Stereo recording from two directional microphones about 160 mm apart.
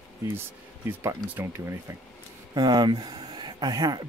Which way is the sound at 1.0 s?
15° right (ahead or behind).